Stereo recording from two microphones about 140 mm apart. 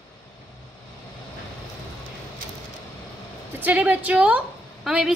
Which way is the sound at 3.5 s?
15° right (ahead or behind).